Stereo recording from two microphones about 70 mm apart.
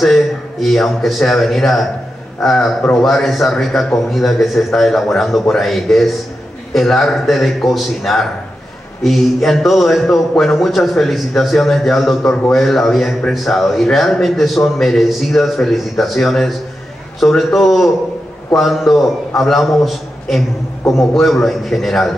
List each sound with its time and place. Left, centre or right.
0.0 s a man's voice: centre